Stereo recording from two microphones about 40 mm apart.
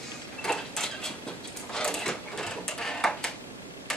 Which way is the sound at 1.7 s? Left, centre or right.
Centre.